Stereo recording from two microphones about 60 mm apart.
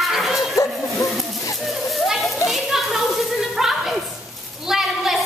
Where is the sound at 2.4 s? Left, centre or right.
Centre.